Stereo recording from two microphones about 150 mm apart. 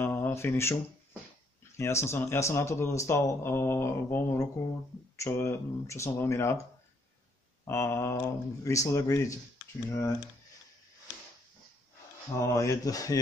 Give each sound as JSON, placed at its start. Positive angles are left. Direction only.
{"t": 0.0, "sound": "mantra", "side_deg": 15}
{"t": 1.8, "sound": "a man's voice", "side_deg": 20}
{"t": 7.6, "sound": "a man's voice", "side_deg": 15}
{"t": 12.4, "sound": "speech", "side_deg": 20}